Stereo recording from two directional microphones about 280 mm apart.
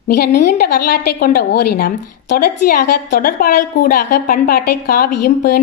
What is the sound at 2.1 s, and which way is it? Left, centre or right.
Speech, left.